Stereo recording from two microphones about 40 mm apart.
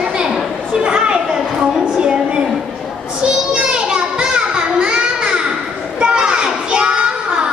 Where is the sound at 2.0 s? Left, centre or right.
Right.